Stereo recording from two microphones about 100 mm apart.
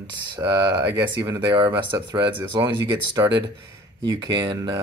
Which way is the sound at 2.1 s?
50° right (ahead or behind).